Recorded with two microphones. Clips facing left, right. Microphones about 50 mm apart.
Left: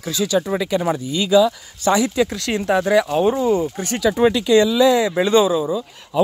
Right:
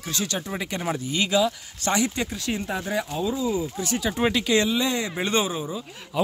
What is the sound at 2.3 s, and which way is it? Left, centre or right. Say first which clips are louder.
Speech: left 9 dB; left.